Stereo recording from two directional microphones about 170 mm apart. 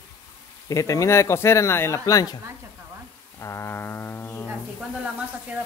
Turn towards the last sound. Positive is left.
turn(degrees=-5)  # may be behind; listen again after turning